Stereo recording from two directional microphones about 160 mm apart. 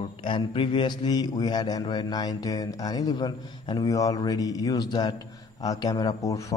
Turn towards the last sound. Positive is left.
turn(degrees=20)  # may be behind; listen again after turning